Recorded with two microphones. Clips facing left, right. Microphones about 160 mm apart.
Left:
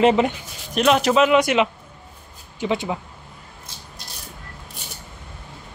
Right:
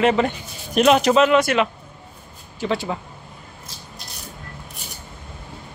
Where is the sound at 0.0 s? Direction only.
20° left (ahead or behind).